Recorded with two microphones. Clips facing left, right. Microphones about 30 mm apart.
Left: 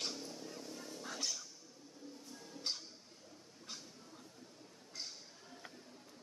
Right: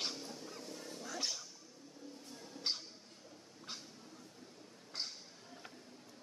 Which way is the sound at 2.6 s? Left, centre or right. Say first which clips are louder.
Right 3 dB; centre.